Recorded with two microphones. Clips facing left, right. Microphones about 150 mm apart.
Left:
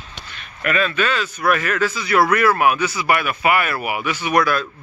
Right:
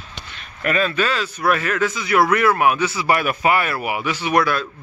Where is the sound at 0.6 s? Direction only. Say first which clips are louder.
Even; 30° right (ahead or behind).